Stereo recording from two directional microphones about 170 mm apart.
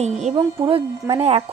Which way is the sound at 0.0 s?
40° right (ahead or behind).